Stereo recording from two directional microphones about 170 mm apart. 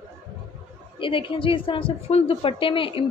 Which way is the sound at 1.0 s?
30° left (ahead or behind).